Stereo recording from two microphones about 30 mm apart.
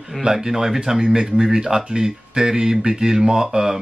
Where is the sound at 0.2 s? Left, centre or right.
Centre.